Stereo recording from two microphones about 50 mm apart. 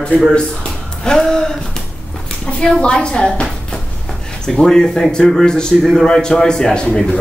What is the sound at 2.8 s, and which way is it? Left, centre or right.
Speech, centre.